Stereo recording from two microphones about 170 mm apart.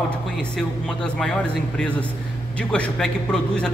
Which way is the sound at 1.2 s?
5° left (ahead or behind).